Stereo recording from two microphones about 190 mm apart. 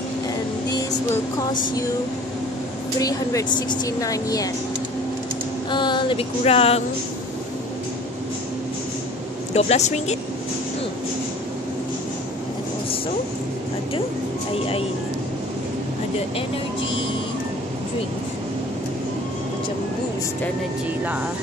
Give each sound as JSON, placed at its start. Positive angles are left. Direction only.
{"t": 3.0, "sound": "a woman's voice", "side_deg": 20}
{"t": 5.7, "sound": "a woman's voice", "side_deg": 25}
{"t": 9.5, "sound": "speech", "side_deg": 35}